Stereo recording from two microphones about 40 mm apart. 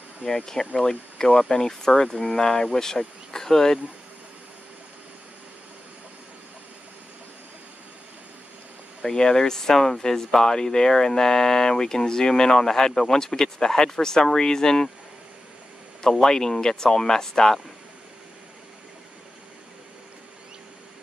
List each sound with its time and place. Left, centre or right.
0.7 s speech: centre
9.0 s speech: centre
16.0 s speech: centre